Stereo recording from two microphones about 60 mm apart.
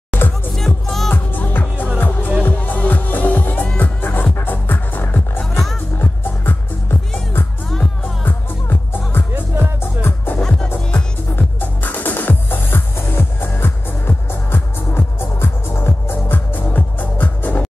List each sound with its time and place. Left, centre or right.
0.6 s music: centre
1.1 s music: left
10.4 s music: centre
11.3 s music: left